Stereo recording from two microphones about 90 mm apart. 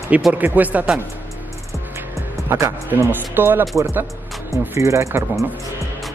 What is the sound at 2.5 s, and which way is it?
A man's voice, 30° right (ahead or behind).